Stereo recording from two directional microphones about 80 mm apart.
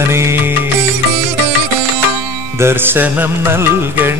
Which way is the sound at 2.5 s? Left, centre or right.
Right.